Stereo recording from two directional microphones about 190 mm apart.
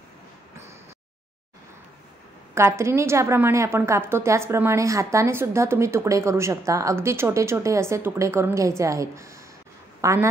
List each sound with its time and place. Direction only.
2.5 s a woman's voice: 15° right (ahead or behind)